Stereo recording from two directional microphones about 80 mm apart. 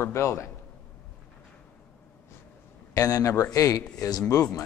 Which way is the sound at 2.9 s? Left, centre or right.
Left.